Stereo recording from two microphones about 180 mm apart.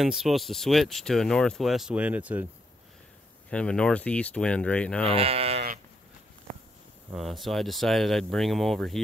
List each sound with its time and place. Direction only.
0.0 s speech: centre (ahead or behind)
3.4 s speech: 5° left (ahead or behind)
5.0 s speech: 35° right (ahead or behind)
7.2 s speech: centre (ahead or behind)